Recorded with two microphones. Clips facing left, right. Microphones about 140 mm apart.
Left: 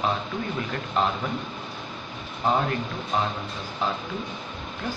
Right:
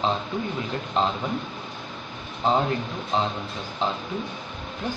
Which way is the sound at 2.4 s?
20° right (ahead or behind).